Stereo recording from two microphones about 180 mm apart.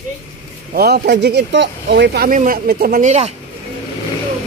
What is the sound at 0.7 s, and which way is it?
Speech, 60° right (ahead or behind).